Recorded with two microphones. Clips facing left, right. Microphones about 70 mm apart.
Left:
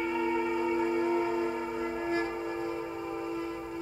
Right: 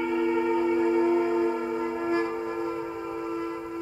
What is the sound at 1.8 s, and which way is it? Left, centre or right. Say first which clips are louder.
Train: right 3 dB; centre.